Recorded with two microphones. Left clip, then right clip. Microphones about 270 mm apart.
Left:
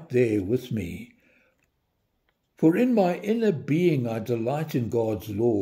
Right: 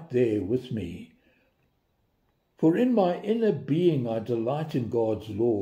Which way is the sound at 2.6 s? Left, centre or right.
Left.